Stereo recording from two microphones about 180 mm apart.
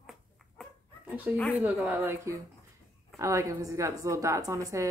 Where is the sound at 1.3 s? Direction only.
5° left (ahead or behind).